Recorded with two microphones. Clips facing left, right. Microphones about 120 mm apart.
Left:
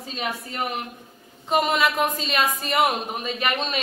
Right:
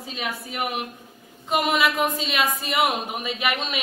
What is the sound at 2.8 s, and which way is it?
A woman's voice, 5° right (ahead or behind).